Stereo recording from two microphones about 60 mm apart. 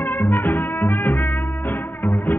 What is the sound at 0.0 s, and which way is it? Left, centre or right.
Music, left.